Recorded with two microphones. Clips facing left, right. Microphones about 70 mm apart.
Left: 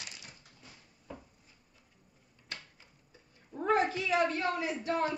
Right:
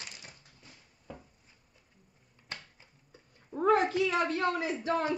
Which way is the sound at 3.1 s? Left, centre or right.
Right.